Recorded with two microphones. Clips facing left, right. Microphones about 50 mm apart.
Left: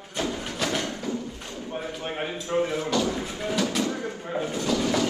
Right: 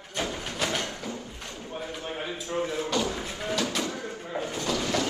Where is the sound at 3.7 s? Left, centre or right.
Left.